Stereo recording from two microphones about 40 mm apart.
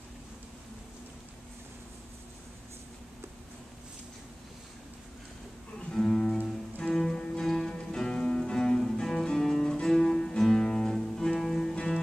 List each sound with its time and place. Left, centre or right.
6.0 s music: centre